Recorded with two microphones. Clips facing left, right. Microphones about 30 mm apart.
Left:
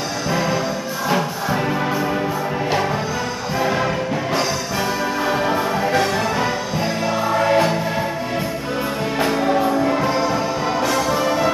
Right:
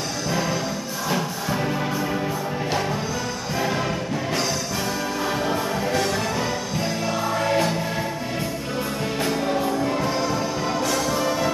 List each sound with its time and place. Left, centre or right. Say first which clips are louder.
0.3 s music: left 4 dB; centre
3.5 s music: left 5 dB; centre
5.3 s music: left 5 dB; centre
7.2 s music: left 6 dB; centre
9.2 s music: left 6 dB; centre